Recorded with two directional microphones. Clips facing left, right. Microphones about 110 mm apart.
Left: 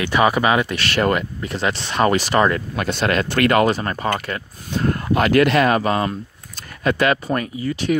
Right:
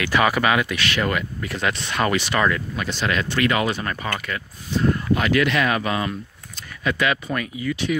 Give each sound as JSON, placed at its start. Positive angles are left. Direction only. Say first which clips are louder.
{"t": 0.0, "sound": "speech", "louder": "left 3 dB", "side_deg": 25}
{"t": 2.7, "sound": "speech", "louder": "left 4 dB", "side_deg": 55}
{"t": 4.6, "sound": "speech", "louder": "even", "side_deg": 50}